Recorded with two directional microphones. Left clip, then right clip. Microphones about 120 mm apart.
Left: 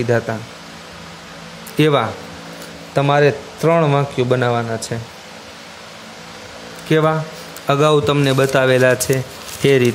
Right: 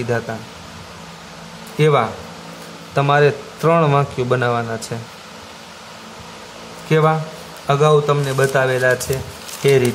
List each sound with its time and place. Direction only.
1.8 s speech: 60° left (ahead or behind)
2.9 s a man's voice: 25° left (ahead or behind)
6.9 s speech: 45° left (ahead or behind)
7.6 s a man's voice: 80° left